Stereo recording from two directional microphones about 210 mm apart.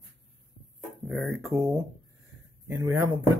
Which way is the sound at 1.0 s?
Centre (ahead or behind).